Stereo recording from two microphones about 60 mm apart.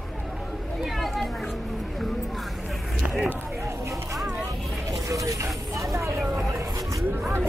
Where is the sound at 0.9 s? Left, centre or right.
Centre.